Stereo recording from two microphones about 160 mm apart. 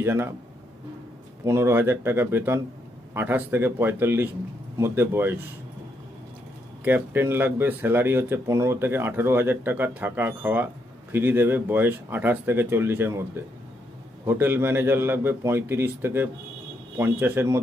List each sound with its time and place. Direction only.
0.0 s speech: 15° right (ahead or behind)
1.4 s speech: 15° right (ahead or behind)
6.8 s speech: 15° right (ahead or behind)
14.2 s speech: 15° right (ahead or behind)